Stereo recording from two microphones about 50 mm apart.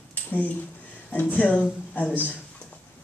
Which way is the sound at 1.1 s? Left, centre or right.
Left.